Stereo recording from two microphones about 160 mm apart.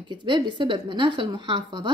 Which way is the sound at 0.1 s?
30° right (ahead or behind).